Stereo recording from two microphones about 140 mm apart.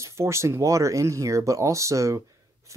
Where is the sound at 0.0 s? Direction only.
20° right (ahead or behind).